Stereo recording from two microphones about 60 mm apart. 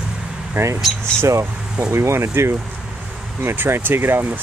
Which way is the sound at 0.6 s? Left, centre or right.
Right.